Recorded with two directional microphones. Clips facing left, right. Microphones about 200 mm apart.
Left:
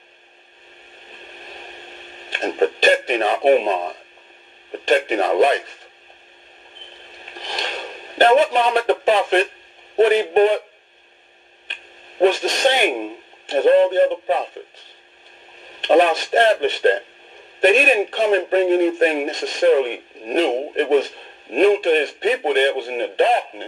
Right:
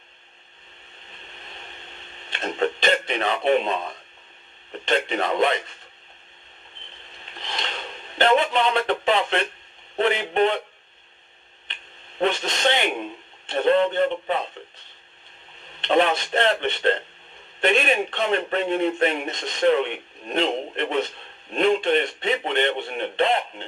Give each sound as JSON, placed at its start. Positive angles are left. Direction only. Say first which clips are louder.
{"t": 1.2, "sound": "a sound", "louder": "left 5 dB", "side_deg": 45}
{"t": 4.9, "sound": "speech", "louder": "left 6 dB", "side_deg": 45}
{"t": 7.2, "sound": "a sound", "louder": "left 4 dB", "side_deg": 45}
{"t": 9.9, "sound": "speech", "louder": "left 7 dB", "side_deg": 45}
{"t": 12.2, "sound": "speech", "louder": "left 7 dB", "side_deg": 45}
{"t": 15.8, "sound": "speech", "louder": "left 5 dB", "side_deg": 45}